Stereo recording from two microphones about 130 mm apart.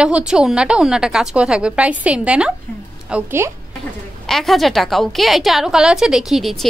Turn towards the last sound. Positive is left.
turn(degrees=0)  # may be behind; listen again after turning